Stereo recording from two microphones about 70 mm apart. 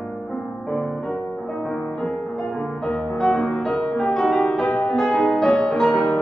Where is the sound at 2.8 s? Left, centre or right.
Centre.